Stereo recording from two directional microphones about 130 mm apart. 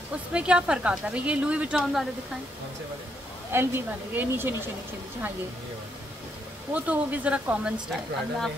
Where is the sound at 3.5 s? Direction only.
15° right (ahead or behind).